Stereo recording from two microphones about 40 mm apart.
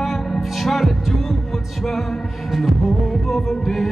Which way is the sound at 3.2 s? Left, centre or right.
Centre.